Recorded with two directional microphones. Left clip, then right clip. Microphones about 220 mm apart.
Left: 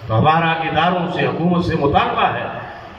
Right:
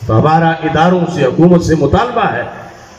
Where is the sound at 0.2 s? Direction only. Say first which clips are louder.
Right 3 dB; 40° right (ahead or behind).